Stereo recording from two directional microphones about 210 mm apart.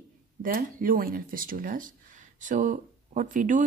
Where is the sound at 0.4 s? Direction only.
40° right (ahead or behind).